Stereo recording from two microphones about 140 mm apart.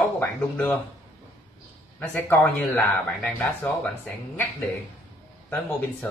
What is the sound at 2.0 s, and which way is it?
Speech, 15° left (ahead or behind).